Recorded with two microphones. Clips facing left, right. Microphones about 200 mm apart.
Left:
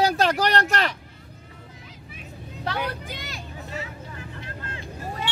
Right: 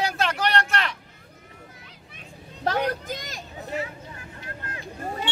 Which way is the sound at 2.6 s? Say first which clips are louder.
Right 5 dB; 45° right (ahead or behind).